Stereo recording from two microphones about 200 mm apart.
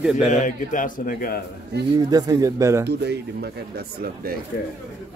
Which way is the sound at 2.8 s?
55° right (ahead or behind).